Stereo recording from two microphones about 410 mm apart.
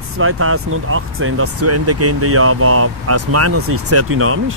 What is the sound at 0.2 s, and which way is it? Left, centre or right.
Speech, right.